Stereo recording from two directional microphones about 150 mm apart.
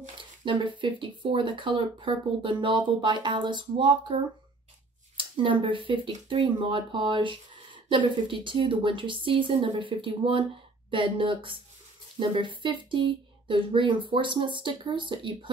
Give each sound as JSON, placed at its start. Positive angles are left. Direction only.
{"t": 0.5, "sound": "speech", "side_deg": -35}